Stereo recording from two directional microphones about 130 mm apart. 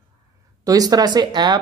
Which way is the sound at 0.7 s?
30° right (ahead or behind).